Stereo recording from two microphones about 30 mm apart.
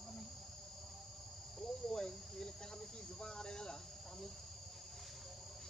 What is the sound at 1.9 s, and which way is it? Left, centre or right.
Cricket, left.